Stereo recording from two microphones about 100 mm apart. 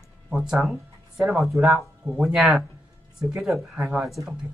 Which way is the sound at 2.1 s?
25° right (ahead or behind).